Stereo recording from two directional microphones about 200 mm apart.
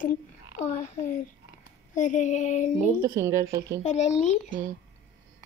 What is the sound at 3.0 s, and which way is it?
Speech, 15° right (ahead or behind).